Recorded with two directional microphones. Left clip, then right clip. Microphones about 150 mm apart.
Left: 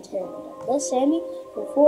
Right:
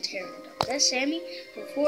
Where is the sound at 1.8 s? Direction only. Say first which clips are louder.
Left 9 dB; 20° right (ahead or behind).